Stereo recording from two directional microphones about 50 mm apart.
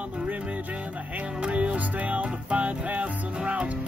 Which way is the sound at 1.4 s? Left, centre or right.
Right.